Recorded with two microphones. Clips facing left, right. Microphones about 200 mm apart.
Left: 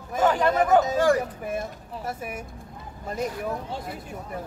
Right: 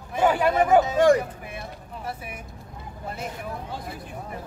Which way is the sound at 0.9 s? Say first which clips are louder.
Right 3 dB; 20° right (ahead or behind).